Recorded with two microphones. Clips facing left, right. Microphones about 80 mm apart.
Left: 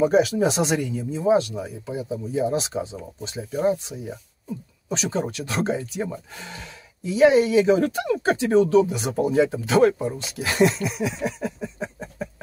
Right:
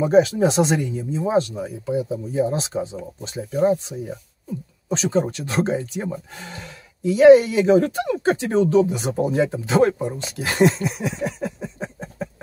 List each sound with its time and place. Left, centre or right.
0.0 s speech: right
4.9 s speech: right